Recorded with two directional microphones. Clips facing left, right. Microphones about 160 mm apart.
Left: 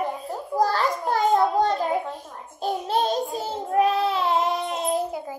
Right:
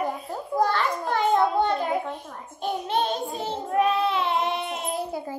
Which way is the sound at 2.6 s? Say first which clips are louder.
Left 2 dB; 35° left (ahead or behind).